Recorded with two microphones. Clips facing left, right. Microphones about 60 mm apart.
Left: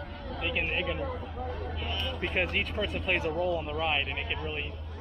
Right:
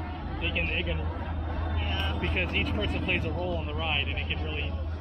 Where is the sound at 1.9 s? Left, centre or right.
Right.